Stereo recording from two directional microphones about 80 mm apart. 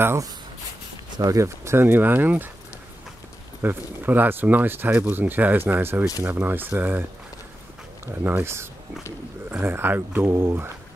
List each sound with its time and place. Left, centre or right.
1.2 s speech: right
3.6 s speech: right
8.1 s speech: right